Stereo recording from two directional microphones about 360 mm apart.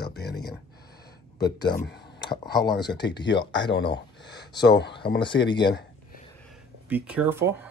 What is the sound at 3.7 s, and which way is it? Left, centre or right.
Speech, left.